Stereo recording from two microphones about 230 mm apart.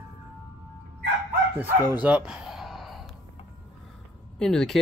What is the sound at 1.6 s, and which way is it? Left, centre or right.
Speech, centre.